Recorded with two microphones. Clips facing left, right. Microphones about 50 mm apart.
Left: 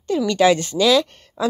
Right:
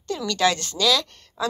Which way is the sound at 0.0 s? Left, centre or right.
Centre.